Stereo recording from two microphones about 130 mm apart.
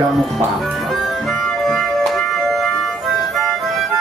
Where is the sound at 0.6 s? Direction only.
Centre (ahead or behind).